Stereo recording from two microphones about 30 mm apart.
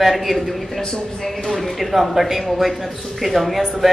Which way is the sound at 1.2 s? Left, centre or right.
Centre.